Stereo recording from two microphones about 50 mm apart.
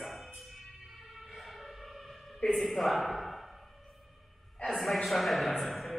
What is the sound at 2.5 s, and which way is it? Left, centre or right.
Speech, centre.